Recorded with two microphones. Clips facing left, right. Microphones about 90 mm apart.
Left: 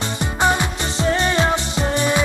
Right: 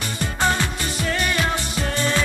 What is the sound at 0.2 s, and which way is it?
Music, 20° left (ahead or behind).